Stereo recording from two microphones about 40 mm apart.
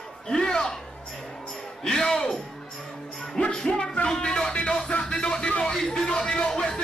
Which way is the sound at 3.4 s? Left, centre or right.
Left.